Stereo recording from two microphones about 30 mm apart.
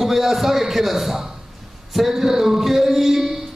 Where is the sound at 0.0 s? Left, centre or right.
Centre.